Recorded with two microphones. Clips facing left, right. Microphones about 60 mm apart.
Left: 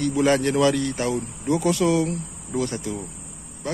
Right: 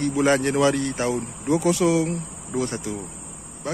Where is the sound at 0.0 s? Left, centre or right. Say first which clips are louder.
Even; right.